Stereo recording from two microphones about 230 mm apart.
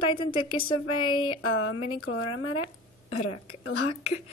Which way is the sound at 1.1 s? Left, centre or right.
Left.